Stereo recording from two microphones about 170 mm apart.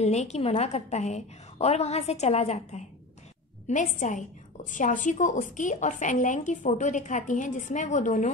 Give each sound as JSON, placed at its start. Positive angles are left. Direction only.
{"t": 0.0, "sound": "a woman's voice", "side_deg": 40}